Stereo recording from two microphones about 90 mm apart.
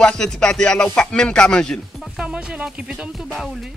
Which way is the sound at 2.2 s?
10° right (ahead or behind).